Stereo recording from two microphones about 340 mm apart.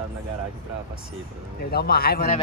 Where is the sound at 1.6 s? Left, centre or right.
Left.